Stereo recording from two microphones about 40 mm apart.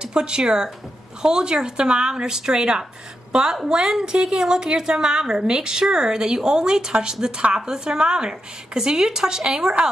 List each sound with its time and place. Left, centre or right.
0.0 s a woman's voice: right